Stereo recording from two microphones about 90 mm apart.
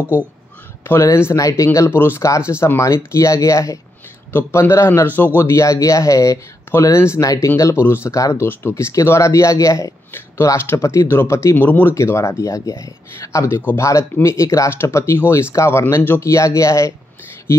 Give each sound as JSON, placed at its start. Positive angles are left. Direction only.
{"t": 0.8, "sound": "speech", "side_deg": 30}
{"t": 11.9, "sound": "speech", "side_deg": 30}